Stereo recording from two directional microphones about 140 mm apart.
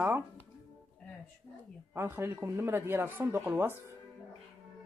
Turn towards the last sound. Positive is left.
turn(degrees=-15)  # may be behind; listen again after turning